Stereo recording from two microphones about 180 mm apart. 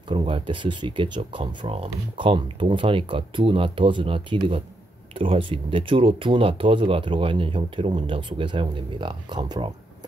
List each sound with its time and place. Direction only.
0.1 s speech: 30° right (ahead or behind)